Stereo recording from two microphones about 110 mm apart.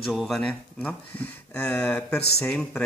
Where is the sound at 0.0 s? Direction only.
Centre (ahead or behind).